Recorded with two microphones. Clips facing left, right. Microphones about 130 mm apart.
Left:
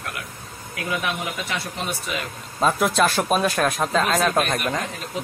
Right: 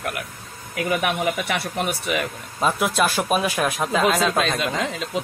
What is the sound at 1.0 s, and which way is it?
A man's voice, 60° right (ahead or behind).